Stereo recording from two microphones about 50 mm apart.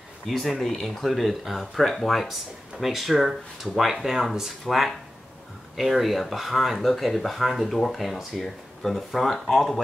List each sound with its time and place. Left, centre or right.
0.3 s speech: centre